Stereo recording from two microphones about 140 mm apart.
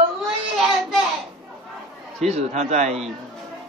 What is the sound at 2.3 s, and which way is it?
Speech, 55° right (ahead or behind).